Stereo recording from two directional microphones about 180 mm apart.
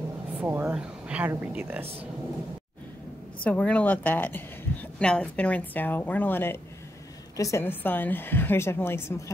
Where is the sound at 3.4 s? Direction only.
5° left (ahead or behind).